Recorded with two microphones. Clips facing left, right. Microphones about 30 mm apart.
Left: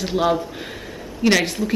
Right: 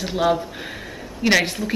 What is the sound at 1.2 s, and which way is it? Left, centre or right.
Speech, centre.